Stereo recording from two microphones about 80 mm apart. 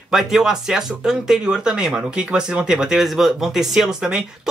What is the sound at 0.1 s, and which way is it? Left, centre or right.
Speech, centre.